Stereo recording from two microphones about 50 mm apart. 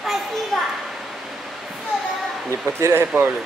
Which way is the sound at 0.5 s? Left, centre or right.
Centre.